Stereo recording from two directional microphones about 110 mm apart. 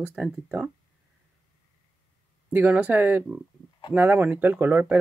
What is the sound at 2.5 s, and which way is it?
Speech, 15° right (ahead or behind).